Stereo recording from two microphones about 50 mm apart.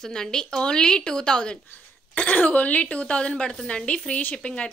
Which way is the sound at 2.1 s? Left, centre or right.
Left.